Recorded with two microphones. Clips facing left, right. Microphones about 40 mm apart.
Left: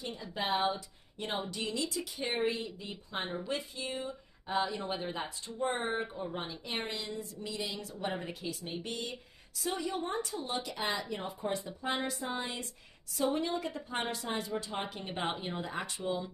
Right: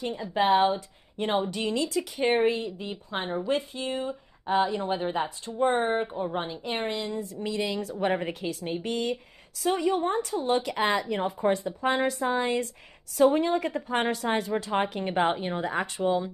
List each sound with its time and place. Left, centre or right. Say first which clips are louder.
0.2 s a woman's voice: right 10 dB; right
7.4 s speech: right 10 dB; right